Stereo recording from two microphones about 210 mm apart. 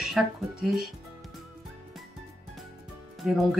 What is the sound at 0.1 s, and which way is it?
Speech, centre (ahead or behind).